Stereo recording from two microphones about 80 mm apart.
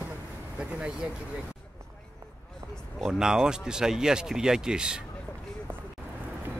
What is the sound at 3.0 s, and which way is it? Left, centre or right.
Speech, centre.